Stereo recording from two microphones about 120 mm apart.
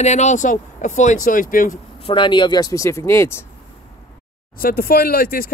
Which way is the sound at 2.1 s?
40° left (ahead or behind).